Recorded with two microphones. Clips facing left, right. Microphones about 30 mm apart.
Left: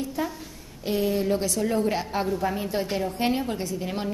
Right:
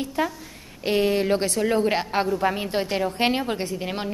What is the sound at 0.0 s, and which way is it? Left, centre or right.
A woman's voice, right.